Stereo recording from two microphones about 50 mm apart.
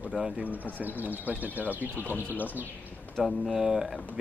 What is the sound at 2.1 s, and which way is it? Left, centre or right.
Speech, left.